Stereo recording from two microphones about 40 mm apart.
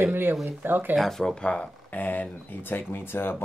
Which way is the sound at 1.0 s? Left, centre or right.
Centre.